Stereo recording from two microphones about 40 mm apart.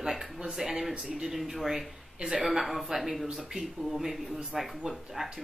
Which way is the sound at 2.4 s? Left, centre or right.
Centre.